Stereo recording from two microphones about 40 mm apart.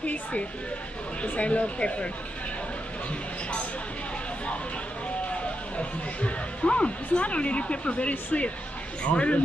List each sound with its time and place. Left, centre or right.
0.0 s speech: left
5.3 s speech: left